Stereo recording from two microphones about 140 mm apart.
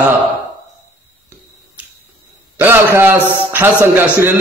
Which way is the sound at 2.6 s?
15° right (ahead or behind).